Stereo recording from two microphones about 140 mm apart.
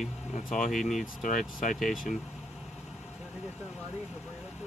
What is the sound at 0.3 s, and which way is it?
Speech, 65° left (ahead or behind).